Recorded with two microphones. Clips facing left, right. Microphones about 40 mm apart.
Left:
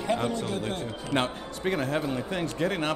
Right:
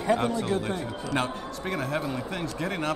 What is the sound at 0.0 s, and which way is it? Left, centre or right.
Speech, right.